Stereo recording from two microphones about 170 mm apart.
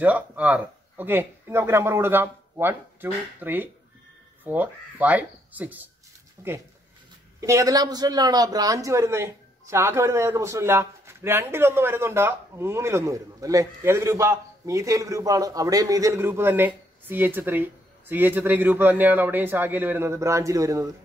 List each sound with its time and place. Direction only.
0.0 s speech: 10° right (ahead or behind)